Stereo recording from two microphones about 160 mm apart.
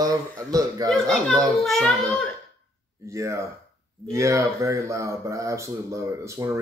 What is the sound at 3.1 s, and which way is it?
Speech, 20° right (ahead or behind).